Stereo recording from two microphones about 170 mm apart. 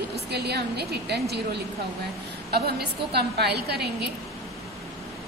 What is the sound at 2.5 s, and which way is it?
A woman's voice, 70° right (ahead or behind).